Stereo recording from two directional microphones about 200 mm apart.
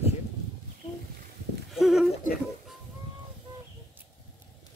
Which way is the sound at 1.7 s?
Centre (ahead or behind).